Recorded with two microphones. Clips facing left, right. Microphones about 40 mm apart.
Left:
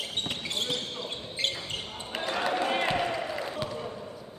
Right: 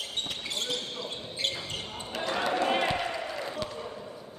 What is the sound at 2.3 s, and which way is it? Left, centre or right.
Basketball bounce, centre.